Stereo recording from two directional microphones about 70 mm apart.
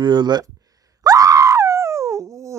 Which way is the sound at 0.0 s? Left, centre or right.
Right.